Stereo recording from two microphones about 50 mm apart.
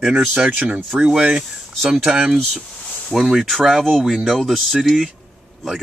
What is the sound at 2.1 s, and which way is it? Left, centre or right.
Speech, centre.